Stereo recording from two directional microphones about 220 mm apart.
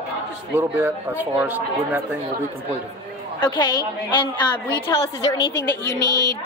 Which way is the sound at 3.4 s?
20° left (ahead or behind).